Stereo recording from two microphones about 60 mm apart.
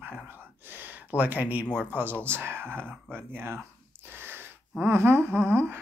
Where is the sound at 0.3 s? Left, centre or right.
Right.